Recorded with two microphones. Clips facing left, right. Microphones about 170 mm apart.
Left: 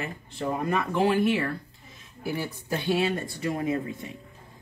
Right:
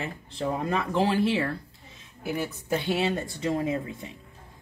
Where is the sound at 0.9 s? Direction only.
30° right (ahead or behind).